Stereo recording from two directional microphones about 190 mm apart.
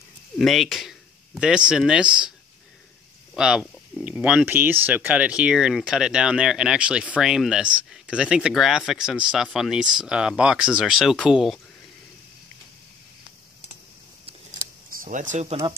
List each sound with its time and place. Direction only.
0.4 s speech: centre (ahead or behind)
3.3 s speech: 5° right (ahead or behind)
15.0 s speech: 40° right (ahead or behind)